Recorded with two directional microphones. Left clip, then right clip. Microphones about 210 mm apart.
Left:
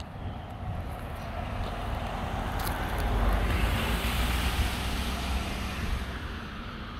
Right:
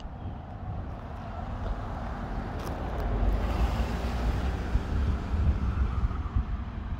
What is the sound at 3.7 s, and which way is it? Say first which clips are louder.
Vehicle: left 4 dB; 25° right (ahead or behind).